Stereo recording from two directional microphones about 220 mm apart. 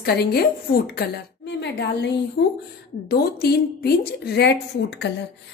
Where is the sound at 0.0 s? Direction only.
45° left (ahead or behind).